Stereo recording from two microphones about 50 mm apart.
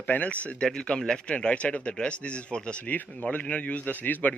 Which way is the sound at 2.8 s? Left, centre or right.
Left.